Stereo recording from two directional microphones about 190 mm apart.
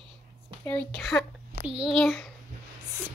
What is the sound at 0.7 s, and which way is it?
A woman's voice, 5° left (ahead or behind).